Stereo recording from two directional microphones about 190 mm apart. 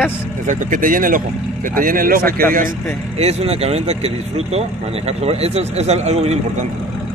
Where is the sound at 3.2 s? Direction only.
35° right (ahead or behind).